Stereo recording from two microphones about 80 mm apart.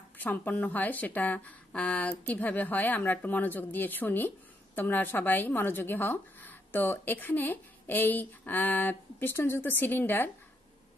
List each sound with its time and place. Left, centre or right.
0.2 s speech: left